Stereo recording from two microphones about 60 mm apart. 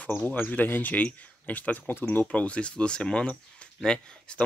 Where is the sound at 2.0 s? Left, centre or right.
Left.